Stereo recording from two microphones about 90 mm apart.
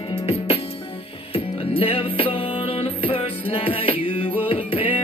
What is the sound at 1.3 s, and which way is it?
Music, 90° left.